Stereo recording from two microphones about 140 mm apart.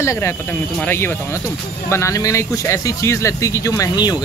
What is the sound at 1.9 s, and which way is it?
Speech, 20° left (ahead or behind).